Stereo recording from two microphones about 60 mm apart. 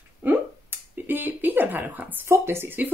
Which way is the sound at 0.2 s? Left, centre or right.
Right.